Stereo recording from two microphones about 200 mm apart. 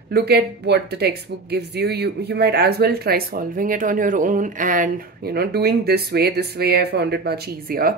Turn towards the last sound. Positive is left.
turn(degrees=-45)  # may be behind; listen again after turning